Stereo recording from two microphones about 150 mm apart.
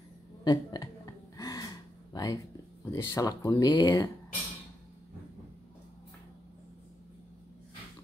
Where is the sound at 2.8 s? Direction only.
20° left (ahead or behind).